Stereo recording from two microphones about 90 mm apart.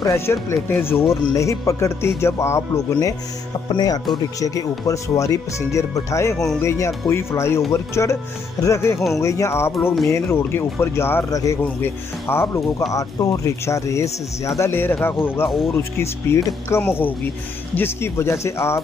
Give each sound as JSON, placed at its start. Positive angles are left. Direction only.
{"t": 0.0, "sound": "speech", "side_deg": 30}
{"t": 3.6, "sound": "speech", "side_deg": 50}
{"t": 4.4, "sound": "speech", "side_deg": 40}
{"t": 6.3, "sound": "speech", "side_deg": 5}
{"t": 7.1, "sound": "speech", "side_deg": 30}
{"t": 11.2, "sound": "speech", "side_deg": 35}
{"t": 11.6, "sound": "speech", "side_deg": 25}
{"t": 15.4, "sound": "speech", "side_deg": -5}
{"t": 16.3, "sound": "speech", "side_deg": 25}